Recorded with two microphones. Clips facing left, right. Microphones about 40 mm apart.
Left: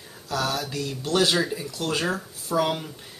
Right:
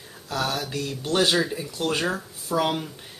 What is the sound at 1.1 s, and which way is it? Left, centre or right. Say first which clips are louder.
Speech: even; centre.